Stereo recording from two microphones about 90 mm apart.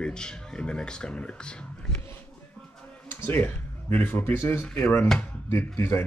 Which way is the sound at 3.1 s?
20° left (ahead or behind).